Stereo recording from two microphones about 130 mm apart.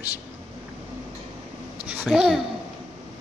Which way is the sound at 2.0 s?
5° right (ahead or behind).